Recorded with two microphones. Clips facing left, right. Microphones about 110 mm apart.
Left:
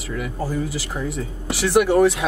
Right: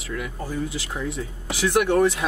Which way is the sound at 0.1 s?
5° left (ahead or behind).